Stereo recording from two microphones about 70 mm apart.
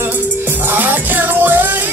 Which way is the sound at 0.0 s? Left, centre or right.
Right.